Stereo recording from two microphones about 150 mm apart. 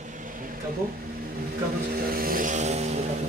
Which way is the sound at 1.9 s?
75° right (ahead or behind).